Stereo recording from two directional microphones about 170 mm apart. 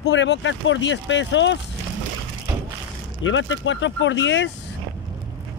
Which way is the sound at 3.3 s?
90° left.